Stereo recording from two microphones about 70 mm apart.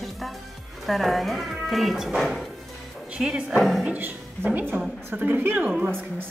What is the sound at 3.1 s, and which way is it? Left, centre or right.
Speech, centre.